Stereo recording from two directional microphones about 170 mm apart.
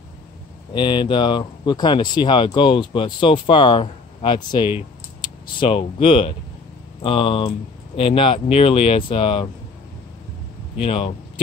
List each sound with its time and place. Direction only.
0.7 s speech: 25° left (ahead or behind)
10.8 s speech: 35° left (ahead or behind)